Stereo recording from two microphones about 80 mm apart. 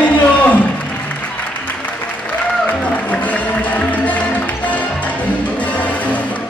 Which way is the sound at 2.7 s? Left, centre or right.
Centre.